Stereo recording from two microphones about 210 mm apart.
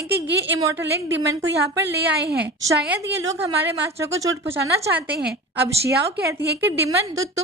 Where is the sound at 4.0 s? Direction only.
15° right (ahead or behind).